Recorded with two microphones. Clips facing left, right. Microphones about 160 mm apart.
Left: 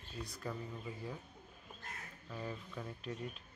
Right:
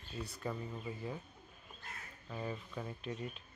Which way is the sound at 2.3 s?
5° right (ahead or behind).